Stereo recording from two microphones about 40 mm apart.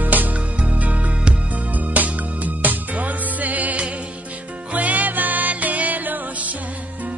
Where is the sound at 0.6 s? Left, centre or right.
Right.